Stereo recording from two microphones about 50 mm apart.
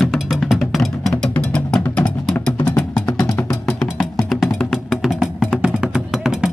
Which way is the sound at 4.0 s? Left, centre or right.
Centre.